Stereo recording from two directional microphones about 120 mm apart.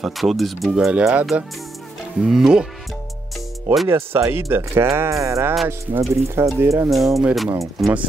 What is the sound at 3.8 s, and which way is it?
Speech, 20° right (ahead or behind).